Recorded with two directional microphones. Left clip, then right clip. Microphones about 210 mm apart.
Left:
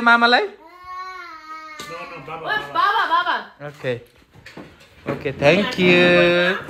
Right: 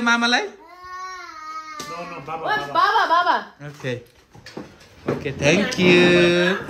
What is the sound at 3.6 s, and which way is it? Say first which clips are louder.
Speech: left 4 dB; 10° right (ahead or behind).